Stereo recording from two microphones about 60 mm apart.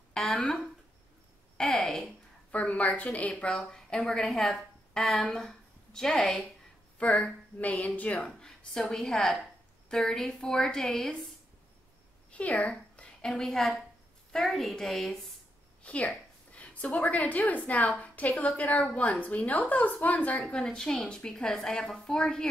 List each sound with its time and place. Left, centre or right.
0.1 s speech: centre
1.6 s a woman's voice: centre
2.5 s a woman's voice: left; by 6.4 s centre
7.0 s a woman's voice: left
8.2 s a woman's voice: centre
12.3 s a woman's voice: left; by 15.1 s centre
15.8 s a woman's voice: left
20.5 s a woman's voice: centre